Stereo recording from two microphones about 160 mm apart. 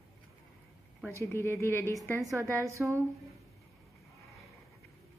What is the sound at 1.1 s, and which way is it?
Speech, 15° left (ahead or behind).